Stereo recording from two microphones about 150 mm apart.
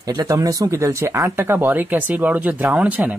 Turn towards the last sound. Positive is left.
turn(degrees=-10)  # may be behind; listen again after turning